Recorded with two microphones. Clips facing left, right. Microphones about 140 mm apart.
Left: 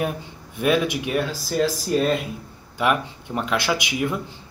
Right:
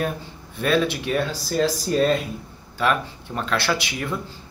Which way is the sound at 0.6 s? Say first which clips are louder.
Left 1 dB; 15° left (ahead or behind).